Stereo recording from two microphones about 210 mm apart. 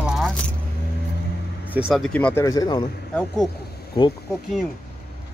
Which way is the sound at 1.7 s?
5° right (ahead or behind).